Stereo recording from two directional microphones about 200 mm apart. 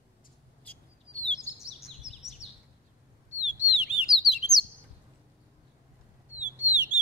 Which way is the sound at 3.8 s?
50° right (ahead or behind).